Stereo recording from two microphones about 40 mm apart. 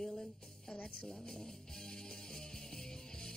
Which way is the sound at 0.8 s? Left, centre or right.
Centre.